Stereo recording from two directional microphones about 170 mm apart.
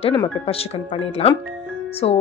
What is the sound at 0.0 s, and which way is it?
Speech, 30° left (ahead or behind).